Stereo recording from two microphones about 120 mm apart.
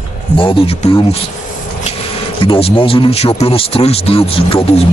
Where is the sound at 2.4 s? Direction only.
50° left (ahead or behind).